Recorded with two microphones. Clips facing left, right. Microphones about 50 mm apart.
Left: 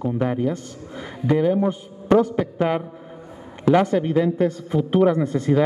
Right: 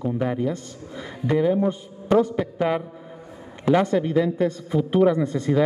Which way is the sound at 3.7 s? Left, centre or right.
Centre.